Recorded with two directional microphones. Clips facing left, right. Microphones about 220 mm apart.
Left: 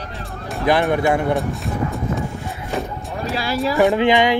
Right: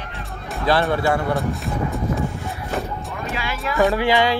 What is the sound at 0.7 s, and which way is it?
Music, 15° left (ahead or behind).